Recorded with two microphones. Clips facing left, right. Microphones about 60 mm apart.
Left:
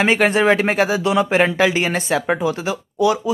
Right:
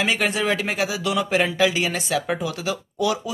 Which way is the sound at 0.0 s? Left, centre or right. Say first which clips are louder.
Left 7 dB; left.